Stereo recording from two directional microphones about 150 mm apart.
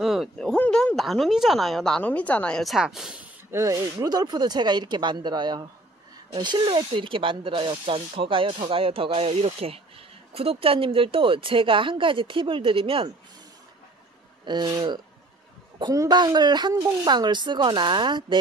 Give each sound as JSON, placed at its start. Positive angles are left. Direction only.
{"t": 0.0, "sound": "speech", "side_deg": 0}
{"t": 3.5, "sound": "speech", "side_deg": -20}
{"t": 14.4, "sound": "speech", "side_deg": -30}